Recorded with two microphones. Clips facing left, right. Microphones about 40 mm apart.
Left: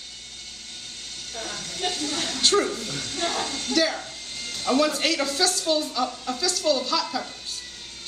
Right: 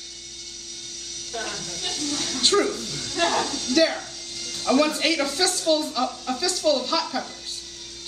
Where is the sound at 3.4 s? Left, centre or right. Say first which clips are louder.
Right 1 dB; left.